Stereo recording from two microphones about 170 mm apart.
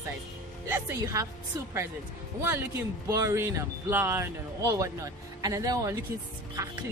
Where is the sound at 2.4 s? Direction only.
15° right (ahead or behind).